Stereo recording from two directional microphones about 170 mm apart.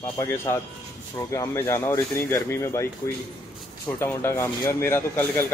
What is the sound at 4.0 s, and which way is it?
A man's voice, 15° left (ahead or behind).